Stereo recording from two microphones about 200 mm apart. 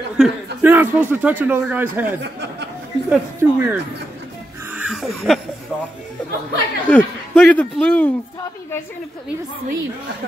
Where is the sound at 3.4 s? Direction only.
10° right (ahead or behind).